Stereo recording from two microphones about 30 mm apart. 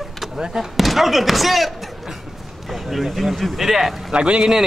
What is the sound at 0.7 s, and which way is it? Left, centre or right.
Speech, centre.